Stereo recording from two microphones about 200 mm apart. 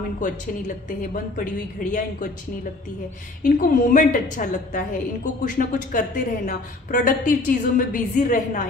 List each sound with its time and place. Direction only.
0.2 s a woman's voice: 40° left (ahead or behind)
3.4 s a woman's voice: 40° left (ahead or behind)